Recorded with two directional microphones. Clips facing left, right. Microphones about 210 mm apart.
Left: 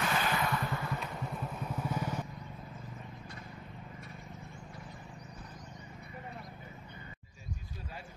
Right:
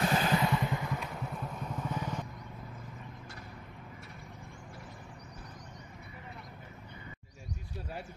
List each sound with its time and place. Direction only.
0.0 s vehicle: 30° right (ahead or behind)
0.5 s vehicle: 15° right (ahead or behind)
1.0 s vehicle: centre (ahead or behind)